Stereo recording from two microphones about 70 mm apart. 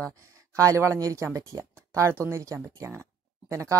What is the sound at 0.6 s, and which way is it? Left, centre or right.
Speech, right.